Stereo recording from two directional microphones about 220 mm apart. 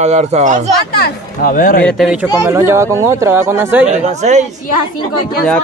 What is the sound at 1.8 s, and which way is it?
Speech, centre (ahead or behind).